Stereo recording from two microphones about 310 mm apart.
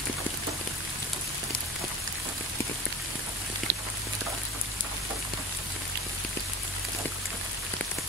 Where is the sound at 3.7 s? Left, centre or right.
Right.